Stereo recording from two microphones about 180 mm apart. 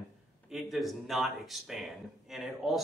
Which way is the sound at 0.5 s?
Centre (ahead or behind).